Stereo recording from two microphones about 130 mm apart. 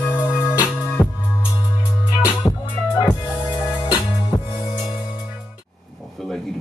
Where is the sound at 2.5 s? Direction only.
30° left (ahead or behind).